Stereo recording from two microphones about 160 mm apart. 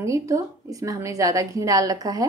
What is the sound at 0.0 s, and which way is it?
A woman's voice, 20° right (ahead or behind).